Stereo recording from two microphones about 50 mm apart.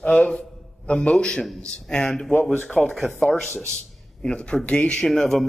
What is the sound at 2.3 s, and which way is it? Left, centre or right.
Speech, left.